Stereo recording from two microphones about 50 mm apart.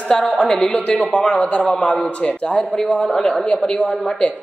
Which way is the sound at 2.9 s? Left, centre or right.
Left.